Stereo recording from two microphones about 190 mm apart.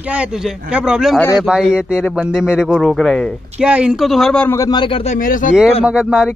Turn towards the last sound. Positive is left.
turn(degrees=-5)  # may be behind; listen again after turning